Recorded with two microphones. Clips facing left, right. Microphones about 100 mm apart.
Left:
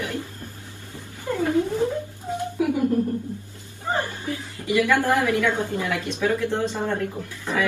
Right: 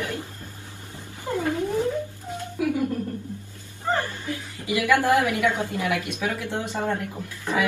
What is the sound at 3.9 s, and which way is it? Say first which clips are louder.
Chuckle: even; 15° left (ahead or behind).